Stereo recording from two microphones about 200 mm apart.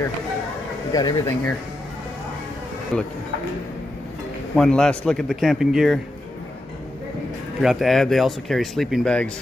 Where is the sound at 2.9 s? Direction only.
5° left (ahead or behind).